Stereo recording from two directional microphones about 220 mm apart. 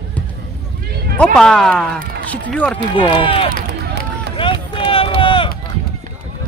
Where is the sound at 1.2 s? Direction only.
5° left (ahead or behind).